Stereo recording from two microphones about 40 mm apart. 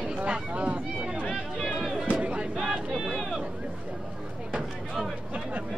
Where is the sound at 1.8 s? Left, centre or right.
Centre.